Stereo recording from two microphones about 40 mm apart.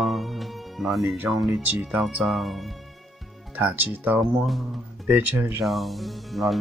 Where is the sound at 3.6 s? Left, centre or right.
Right.